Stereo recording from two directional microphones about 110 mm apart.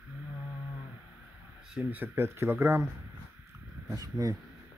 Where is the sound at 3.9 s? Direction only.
35° right (ahead or behind).